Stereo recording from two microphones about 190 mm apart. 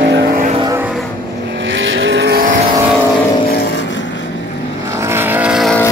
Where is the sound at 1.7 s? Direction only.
90° right; by 2.5 s 55° right (ahead or behind).